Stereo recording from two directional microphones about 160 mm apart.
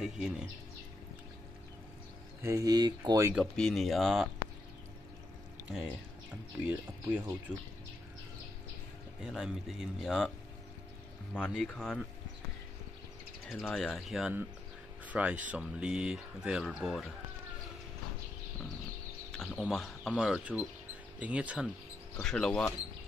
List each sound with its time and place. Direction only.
0.0 s speech: 5° right (ahead or behind)
2.4 s speech: 20° right (ahead or behind)
3.3 s speech: 5° left (ahead or behind)
6.6 s speech: 10° right (ahead or behind)
9.2 s speech: centre (ahead or behind)
11.3 s speech: 5° left (ahead or behind)
13.5 s speech: centre (ahead or behind)
19.3 s speech: centre (ahead or behind)
22.1 s speech: 5° left (ahead or behind)